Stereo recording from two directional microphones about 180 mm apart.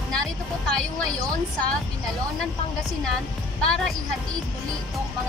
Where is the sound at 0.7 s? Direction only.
5° left (ahead or behind).